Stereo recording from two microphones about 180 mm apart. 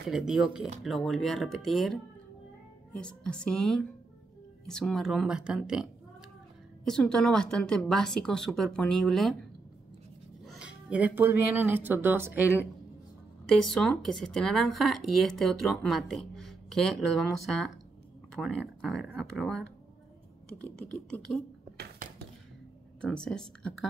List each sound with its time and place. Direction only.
0.1 s speech: centre (ahead or behind)
3.0 s speech: 5° left (ahead or behind)
10.4 s speech: 5° right (ahead or behind)
13.7 s speech: centre (ahead or behind)
22.9 s speech: 5° left (ahead or behind)